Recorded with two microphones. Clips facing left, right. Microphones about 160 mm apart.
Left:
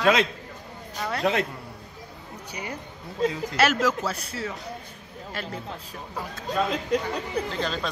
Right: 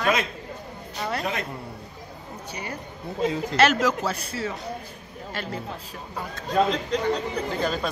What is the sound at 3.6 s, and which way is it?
Speech, 5° left (ahead or behind).